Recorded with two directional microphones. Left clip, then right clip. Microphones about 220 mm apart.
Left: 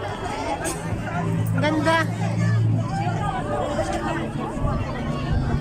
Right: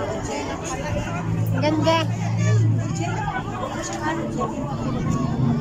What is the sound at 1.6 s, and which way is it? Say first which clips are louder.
Music: even; 5° right (ahead or behind).